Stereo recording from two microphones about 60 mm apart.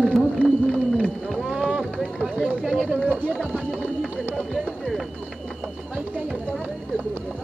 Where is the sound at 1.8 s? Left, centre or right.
Centre.